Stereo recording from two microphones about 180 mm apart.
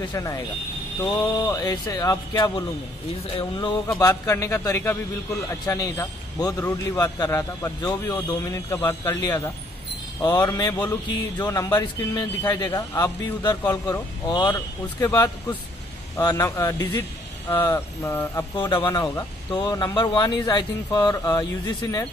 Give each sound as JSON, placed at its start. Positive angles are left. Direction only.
{"t": 0.1, "sound": "a man's voice", "side_deg": 20}